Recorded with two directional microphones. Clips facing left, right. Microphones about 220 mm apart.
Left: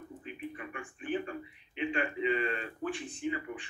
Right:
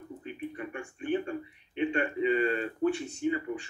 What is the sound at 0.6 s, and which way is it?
A man's voice, 30° right (ahead or behind).